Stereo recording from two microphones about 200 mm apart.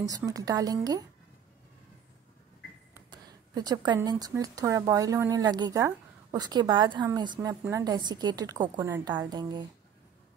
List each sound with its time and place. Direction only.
0.0 s a woman's voice: 15° right (ahead or behind)
2.9 s a woman's voice: 20° right (ahead or behind)